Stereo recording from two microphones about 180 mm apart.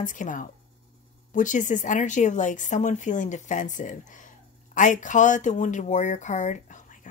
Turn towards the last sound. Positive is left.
turn(degrees=45)  # may be behind; listen again after turning